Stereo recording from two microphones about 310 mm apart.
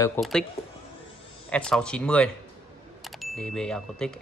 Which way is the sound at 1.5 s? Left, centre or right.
Centre.